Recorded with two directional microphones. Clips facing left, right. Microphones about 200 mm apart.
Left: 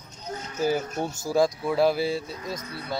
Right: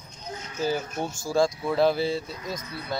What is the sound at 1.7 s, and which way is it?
Speech, 5° left (ahead or behind).